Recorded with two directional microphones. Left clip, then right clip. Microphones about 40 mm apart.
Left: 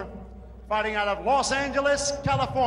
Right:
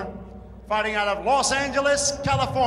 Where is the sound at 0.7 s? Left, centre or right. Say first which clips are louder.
Right 2 dB; right.